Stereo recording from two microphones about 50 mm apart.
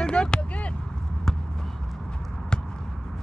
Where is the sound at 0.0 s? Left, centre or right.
Centre.